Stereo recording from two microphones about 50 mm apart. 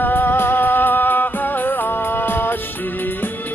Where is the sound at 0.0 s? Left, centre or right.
Left.